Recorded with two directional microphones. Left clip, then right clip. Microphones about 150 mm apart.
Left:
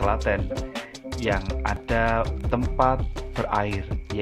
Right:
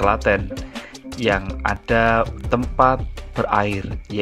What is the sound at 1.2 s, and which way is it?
Speech, 35° right (ahead or behind).